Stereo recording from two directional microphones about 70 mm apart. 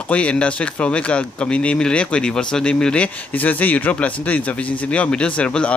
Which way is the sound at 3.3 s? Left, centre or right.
Left.